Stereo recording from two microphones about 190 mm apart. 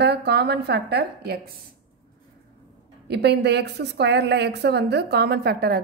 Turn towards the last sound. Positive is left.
turn(degrees=-55)  # may be behind; listen again after turning